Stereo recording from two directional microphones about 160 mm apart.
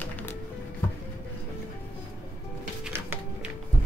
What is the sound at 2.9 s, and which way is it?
Music, 10° right (ahead or behind).